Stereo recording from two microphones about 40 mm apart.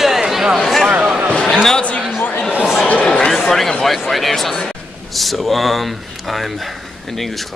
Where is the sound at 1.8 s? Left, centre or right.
Left.